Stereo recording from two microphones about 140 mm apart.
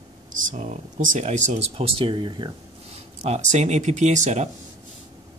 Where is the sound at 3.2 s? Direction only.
50° right (ahead or behind).